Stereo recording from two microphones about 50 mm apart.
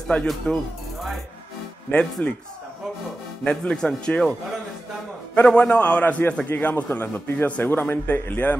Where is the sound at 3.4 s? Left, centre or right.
Left.